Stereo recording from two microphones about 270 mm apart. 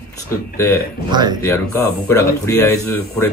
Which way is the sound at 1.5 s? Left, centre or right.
Centre.